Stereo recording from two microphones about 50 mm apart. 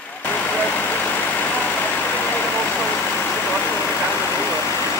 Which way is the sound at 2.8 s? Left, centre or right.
Left.